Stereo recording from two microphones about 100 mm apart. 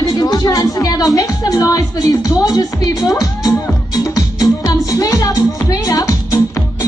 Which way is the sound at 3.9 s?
35° left (ahead or behind).